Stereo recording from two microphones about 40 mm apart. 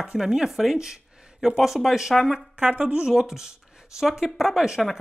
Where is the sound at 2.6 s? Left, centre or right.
Right.